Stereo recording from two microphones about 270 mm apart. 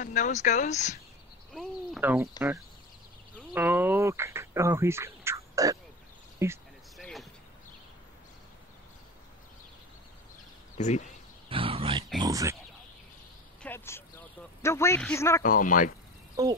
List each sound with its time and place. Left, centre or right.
0.0 s speech: left
1.5 s speech: centre
3.5 s speech: centre
6.4 s a sound: centre
10.8 s speech: left
11.4 s a sound: centre
12.2 s speech: centre
13.6 s a sound: centre
15.4 s speech: left
16.4 s speech: centre